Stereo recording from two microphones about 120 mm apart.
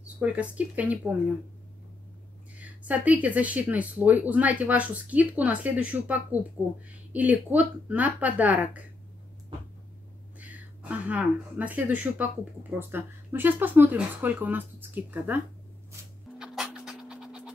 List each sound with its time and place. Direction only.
0.2 s speech: 10° right (ahead or behind)
2.6 s speech: 15° right (ahead or behind)
10.4 s speech: 15° right (ahead or behind)
16.3 s music: 5° right (ahead or behind)